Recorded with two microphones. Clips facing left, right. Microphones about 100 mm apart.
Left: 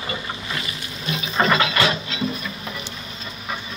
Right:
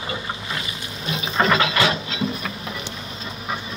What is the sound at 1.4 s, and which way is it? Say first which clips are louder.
Ratchet: even; 5° left (ahead or behind).